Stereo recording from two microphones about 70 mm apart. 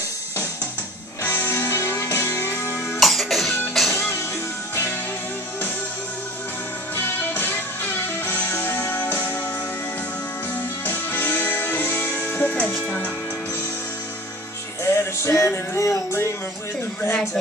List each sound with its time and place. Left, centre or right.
1.2 s music: left
3.0 s music: centre
7.0 s music: left
10.9 s music: left
14.8 s music: left
17.1 s a sound: left